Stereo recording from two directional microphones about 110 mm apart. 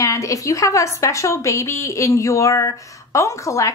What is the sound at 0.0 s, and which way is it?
A woman's voice, 30° left (ahead or behind).